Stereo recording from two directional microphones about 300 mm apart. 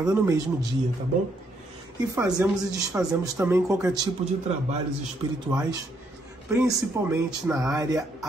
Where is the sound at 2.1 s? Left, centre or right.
Centre.